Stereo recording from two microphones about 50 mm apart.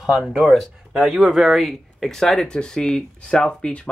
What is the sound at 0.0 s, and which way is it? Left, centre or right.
Speech, centre.